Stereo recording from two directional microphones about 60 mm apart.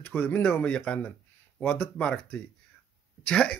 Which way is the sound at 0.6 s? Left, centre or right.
Centre.